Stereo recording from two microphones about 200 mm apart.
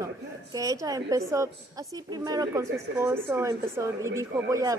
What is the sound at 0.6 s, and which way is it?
Speech, 15° right (ahead or behind).